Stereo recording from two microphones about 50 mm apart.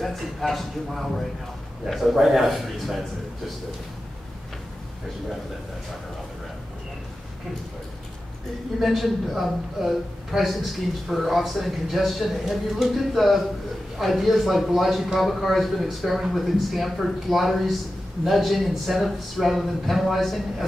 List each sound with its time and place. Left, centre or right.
0.0 s a man's voice: centre
8.7 s a man's voice: centre